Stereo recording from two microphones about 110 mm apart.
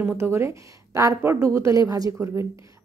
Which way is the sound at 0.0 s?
20° right (ahead or behind).